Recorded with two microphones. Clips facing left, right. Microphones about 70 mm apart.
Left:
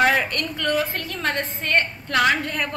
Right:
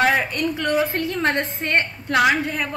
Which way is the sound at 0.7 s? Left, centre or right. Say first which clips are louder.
Right 1 dB; right.